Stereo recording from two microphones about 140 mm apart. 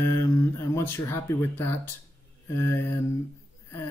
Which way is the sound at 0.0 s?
15° left (ahead or behind).